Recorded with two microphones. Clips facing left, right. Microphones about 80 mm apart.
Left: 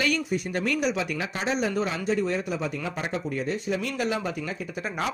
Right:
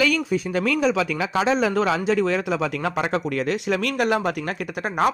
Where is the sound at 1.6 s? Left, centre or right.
Right.